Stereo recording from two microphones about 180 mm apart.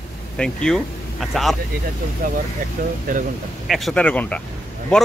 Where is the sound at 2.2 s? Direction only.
50° right (ahead or behind).